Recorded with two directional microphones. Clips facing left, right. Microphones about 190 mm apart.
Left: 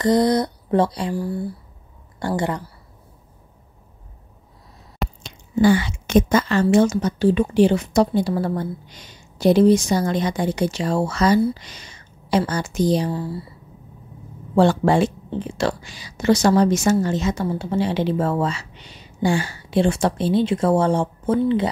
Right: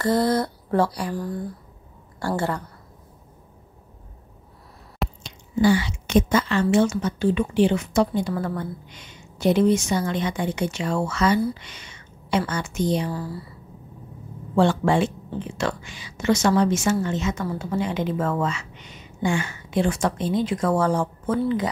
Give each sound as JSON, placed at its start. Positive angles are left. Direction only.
{"t": 0.0, "sound": "speech", "side_deg": 20}
{"t": 1.1, "sound": "speech", "side_deg": 10}
{"t": 5.2, "sound": "a woman's voice", "side_deg": 50}
{"t": 14.5, "sound": "a woman's voice", "side_deg": 35}